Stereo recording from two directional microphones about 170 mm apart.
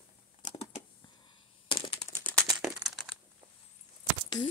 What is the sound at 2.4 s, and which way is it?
Crumpling, centre (ahead or behind).